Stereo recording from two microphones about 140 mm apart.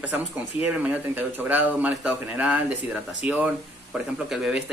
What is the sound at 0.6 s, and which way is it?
Speech, 10° right (ahead or behind).